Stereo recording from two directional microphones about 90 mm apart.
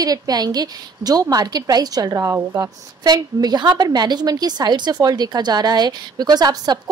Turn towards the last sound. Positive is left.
turn(degrees=-50)  # may be behind; listen again after turning